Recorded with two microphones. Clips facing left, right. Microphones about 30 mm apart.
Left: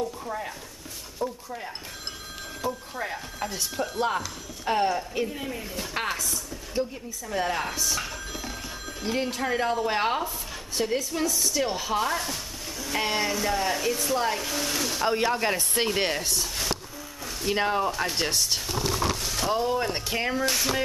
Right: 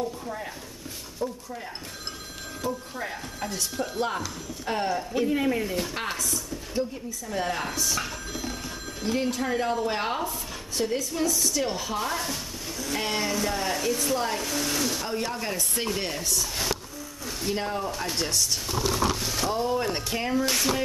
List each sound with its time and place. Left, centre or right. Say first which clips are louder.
1.2 s speech: left 1 dB; centre
2.6 s speech: even; centre
5.3 s speech: right 9 dB; right
5.6 s speech: right 6 dB; centre
6.0 s a sound: even; centre
7.2 s speech: left 2 dB; centre
15.0 s speech: left 6 dB; left
17.5 s speech: left 5 dB; left
18.8 s a sound: right 3 dB; centre
19.7 s speech: even; centre
20.4 s speech: even; centre